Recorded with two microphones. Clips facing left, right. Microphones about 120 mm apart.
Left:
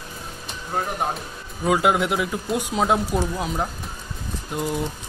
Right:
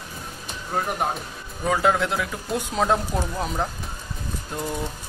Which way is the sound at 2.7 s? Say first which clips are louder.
Left 1 dB; 5° left (ahead or behind).